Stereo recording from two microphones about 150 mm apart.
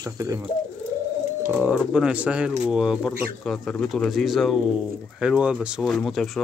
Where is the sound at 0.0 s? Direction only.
20° right (ahead or behind).